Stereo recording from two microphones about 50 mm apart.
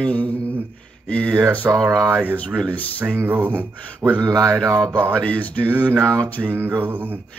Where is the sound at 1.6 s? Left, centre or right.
Right.